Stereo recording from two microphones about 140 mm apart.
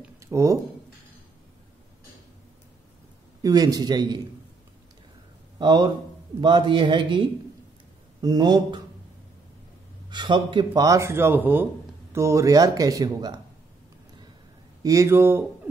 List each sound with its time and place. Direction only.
0.2 s speech: 20° right (ahead or behind)
3.4 s speech: 25° right (ahead or behind)
5.6 s speech: 30° right (ahead or behind)
10.0 s speech: 35° right (ahead or behind)
14.8 s speech: 25° right (ahead or behind)